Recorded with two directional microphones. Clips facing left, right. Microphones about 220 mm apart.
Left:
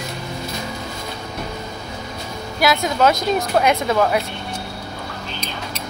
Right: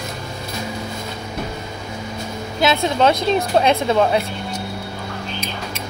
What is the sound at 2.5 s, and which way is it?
A woman's voice, 25° right (ahead or behind).